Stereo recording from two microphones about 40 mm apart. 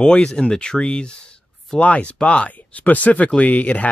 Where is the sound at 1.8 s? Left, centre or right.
Left.